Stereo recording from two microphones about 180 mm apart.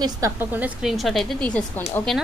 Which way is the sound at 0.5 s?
5° right (ahead or behind).